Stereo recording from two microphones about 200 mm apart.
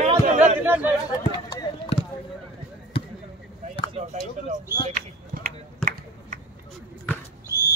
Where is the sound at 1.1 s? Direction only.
20° left (ahead or behind).